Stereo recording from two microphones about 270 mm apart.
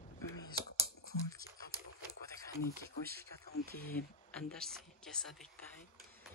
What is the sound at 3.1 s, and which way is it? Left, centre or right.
Speech, right.